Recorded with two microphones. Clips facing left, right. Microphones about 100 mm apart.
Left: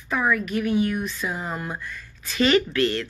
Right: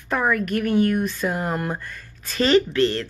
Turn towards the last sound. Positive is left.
turn(degrees=-30)  # may be behind; listen again after turning